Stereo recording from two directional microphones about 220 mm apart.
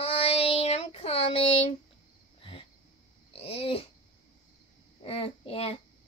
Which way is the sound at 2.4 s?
25° left (ahead or behind).